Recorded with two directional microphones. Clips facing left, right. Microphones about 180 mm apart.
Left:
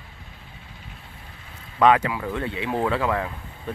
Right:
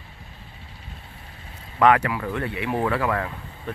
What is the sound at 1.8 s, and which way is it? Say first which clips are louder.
Speech: even; 20° left (ahead or behind).